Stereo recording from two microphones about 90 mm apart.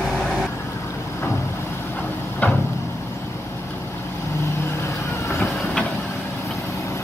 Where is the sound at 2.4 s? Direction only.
20° left (ahead or behind).